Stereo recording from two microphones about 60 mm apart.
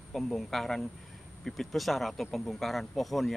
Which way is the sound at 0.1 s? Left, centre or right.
Centre.